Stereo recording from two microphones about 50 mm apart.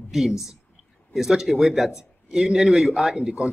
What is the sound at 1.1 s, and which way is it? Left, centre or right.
A man's voice, centre.